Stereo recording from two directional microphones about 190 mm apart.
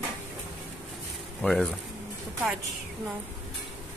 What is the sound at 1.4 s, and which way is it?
Speech, 5° left (ahead or behind).